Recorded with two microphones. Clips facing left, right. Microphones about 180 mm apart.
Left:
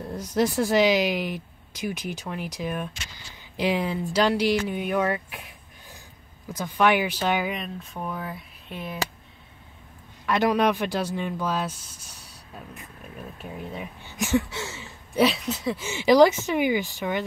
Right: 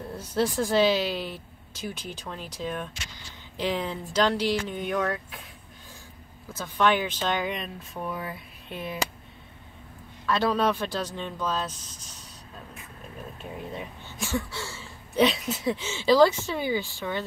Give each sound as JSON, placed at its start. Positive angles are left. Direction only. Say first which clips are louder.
{"t": 0.1, "sound": "speech", "louder": "left 3 dB", "side_deg": 10}
{"t": 6.5, "sound": "speech", "louder": "left 2 dB", "side_deg": 15}
{"t": 10.2, "sound": "speech", "louder": "left 3 dB", "side_deg": 15}
{"t": 13.4, "sound": "speech", "louder": "left 1 dB", "side_deg": 5}
{"t": 14.1, "sound": "a sound", "louder": "left 6 dB", "side_deg": 20}
{"t": 15.1, "sound": "speech", "louder": "left 1 dB", "side_deg": 0}
{"t": 15.8, "sound": "speech", "louder": "left 3 dB", "side_deg": 15}